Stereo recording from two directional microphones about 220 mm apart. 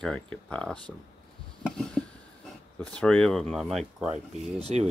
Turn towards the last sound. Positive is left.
turn(degrees=-30)  # may be behind; listen again after turning